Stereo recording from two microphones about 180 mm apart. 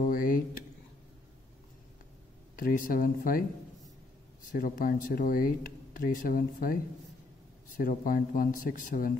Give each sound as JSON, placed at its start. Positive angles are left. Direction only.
{"t": 0.0, "sound": "speech", "side_deg": 50}
{"t": 2.6, "sound": "speech", "side_deg": 50}